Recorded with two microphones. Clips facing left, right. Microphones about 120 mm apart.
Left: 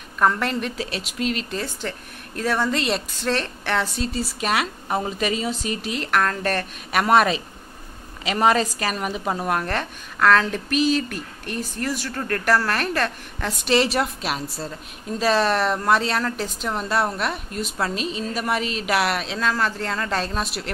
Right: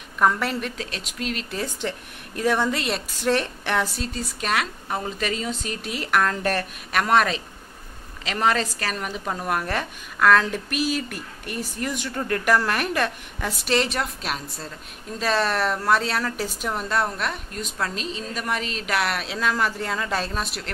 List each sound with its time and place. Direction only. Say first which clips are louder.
0.2 s a woman's voice: left 1 dB; 5° right (ahead or behind)
0.7 s a woman's voice: left 4 dB; 5° left (ahead or behind)
1.8 s a woman's voice: right 1 dB; 15° right (ahead or behind)
4.0 s speech: left 4 dB; 5° left (ahead or behind)
6.9 s speech: left 3 dB; 10° left (ahead or behind)
9.5 s a woman's voice: left 1 dB; 5° right (ahead or behind)
13.7 s a woman's voice: left 4 dB; 5° left (ahead or behind)
19.2 s a woman's voice: left 1 dB; 10° right (ahead or behind)